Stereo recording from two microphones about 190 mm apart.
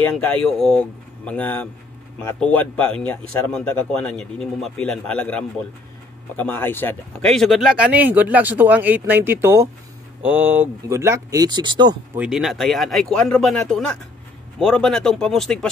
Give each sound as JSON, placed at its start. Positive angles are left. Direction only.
{"t": 0.0, "sound": "a man's voice", "side_deg": 5}
{"t": 12.2, "sound": "a man's voice", "side_deg": 0}